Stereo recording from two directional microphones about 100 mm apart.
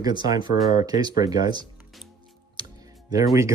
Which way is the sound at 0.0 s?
45° right (ahead or behind).